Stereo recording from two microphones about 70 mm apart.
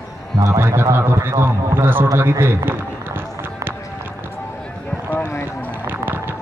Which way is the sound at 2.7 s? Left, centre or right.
Right.